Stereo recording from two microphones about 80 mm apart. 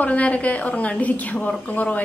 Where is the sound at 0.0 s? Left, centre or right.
Centre.